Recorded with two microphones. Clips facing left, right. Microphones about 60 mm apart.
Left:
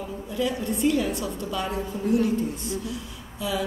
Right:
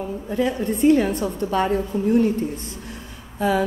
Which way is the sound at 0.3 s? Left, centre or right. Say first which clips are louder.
Right 4 dB; right.